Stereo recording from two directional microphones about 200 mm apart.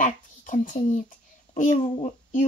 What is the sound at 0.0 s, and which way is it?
A child's voice, 40° left (ahead or behind).